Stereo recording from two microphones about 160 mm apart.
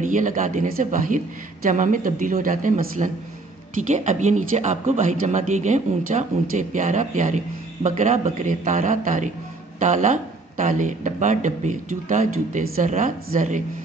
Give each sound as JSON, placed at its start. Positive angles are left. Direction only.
{"t": 0.0, "sound": "a man's voice", "side_deg": -55}